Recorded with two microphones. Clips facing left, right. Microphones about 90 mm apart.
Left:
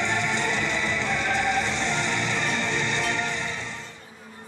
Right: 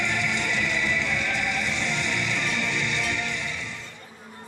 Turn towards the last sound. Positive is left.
turn(degrees=35)  # may be behind; listen again after turning